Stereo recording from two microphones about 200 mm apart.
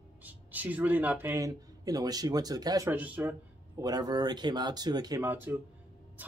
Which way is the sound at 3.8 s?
20° right (ahead or behind).